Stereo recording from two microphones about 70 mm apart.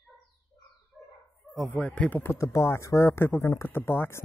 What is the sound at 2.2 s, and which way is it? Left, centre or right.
Speech, left.